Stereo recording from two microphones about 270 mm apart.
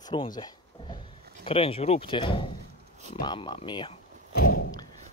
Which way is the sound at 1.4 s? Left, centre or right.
Left.